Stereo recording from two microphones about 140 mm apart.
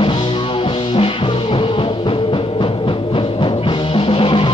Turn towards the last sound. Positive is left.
turn(degrees=40)  # may be behind; listen again after turning